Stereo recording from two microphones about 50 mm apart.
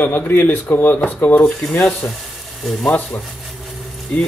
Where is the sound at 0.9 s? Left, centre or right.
Left.